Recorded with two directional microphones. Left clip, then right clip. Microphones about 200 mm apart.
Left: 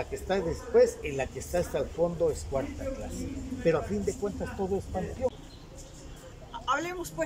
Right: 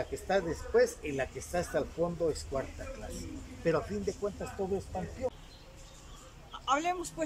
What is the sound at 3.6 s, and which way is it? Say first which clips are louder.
Speech: left 4 dB; centre (ahead or behind).